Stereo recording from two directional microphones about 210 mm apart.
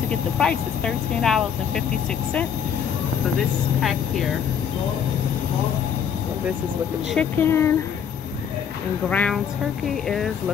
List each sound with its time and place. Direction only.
0.1 s speech: 5° left (ahead or behind)
7.2 s speech: 10° left (ahead or behind)
9.1 s speech: 5° left (ahead or behind)